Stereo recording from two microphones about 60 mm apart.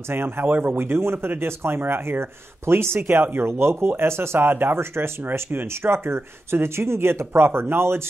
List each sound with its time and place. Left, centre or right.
0.1 s speech: right